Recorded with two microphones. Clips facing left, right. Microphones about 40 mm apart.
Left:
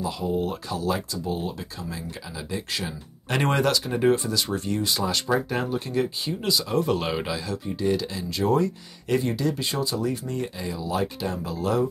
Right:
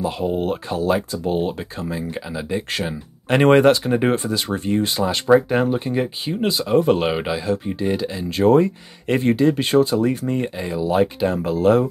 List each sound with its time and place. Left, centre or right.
0.0 s speech: right
2.7 s speech: right
8.3 s speech: right